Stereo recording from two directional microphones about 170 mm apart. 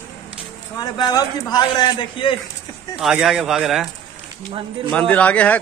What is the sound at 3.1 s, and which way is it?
Speech, 5° right (ahead or behind).